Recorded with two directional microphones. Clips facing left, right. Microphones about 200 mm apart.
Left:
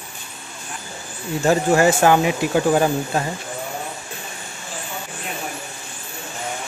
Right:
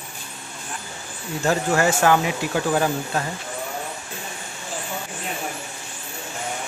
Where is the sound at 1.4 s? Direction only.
20° left (ahead or behind).